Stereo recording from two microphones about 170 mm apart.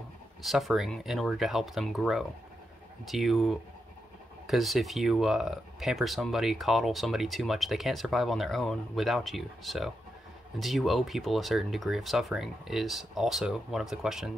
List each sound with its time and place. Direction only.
0.4 s speech: centre (ahead or behind)